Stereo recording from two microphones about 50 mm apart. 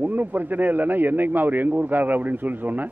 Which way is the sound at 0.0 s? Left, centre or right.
Right.